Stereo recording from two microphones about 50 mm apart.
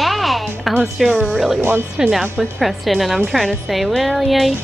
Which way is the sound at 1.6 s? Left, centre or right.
Right.